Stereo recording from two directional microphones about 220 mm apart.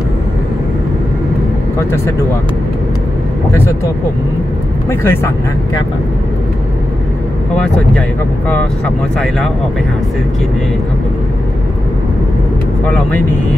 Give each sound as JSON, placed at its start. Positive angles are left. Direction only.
{"t": 4.8, "sound": "speech", "side_deg": 10}
{"t": 12.8, "sound": "speech", "side_deg": 5}